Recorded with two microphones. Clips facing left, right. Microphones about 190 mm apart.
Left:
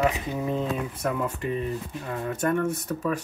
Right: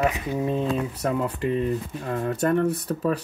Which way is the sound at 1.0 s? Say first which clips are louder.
Right 3 dB; 35° right (ahead or behind).